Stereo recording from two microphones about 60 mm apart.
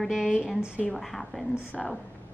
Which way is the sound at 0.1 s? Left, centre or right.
Centre.